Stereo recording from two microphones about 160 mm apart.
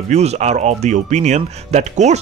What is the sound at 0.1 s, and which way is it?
Speech, 45° right (ahead or behind).